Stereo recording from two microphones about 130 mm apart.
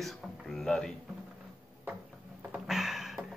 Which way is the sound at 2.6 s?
5° right (ahead or behind).